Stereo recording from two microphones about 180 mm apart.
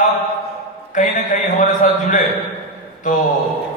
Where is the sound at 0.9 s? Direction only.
45° left (ahead or behind).